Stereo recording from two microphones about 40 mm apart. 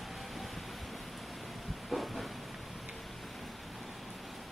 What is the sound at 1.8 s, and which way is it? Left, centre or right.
Train, centre.